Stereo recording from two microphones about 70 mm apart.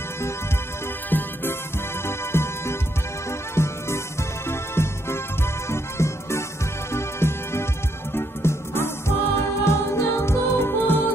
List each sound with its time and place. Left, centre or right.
1.1 s music: left
2.0 s music: left